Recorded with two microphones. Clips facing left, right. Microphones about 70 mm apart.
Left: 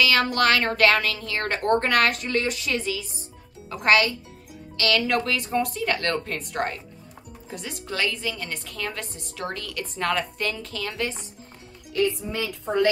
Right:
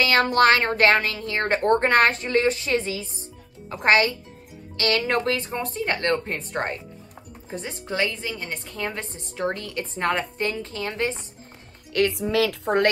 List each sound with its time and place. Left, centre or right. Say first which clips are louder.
0.0 s a woman's voice: right 3 dB; right
11.9 s a woman's voice: right 3 dB; right